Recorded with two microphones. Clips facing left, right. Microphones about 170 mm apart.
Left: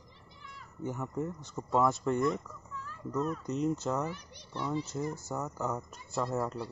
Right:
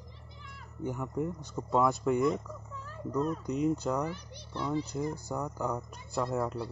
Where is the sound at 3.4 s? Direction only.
Centre (ahead or behind).